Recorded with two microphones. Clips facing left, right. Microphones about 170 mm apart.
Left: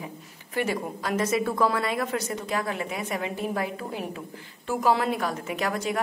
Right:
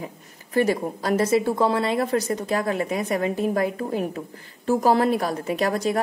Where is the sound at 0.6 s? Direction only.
35° right (ahead or behind).